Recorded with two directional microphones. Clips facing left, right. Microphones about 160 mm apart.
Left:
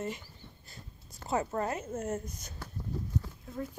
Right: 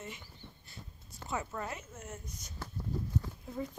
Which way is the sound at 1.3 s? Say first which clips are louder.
Left 7 dB; 45° left (ahead or behind).